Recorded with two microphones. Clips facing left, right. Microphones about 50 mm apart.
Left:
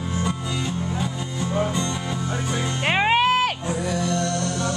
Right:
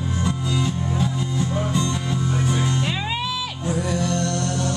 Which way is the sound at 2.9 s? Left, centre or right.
Left.